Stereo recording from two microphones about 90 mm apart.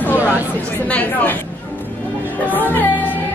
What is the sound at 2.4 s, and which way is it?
Music, 20° left (ahead or behind).